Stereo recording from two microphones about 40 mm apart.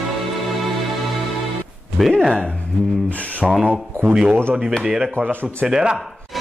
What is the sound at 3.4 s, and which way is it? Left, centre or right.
Speech, centre.